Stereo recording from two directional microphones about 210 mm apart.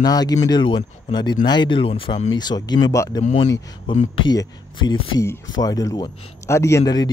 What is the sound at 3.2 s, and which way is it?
Speech, 30° left (ahead or behind).